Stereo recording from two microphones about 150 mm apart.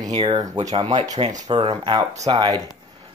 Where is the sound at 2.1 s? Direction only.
25° right (ahead or behind).